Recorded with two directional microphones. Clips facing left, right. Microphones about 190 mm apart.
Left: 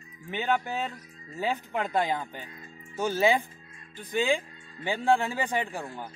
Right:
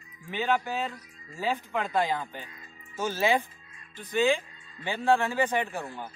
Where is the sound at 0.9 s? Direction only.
20° left (ahead or behind).